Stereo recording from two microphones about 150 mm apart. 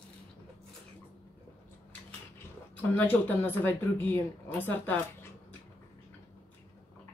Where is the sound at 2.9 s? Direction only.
10° left (ahead or behind).